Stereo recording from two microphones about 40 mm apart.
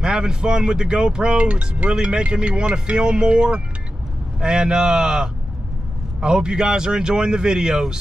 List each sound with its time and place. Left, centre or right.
0.0 s speech: centre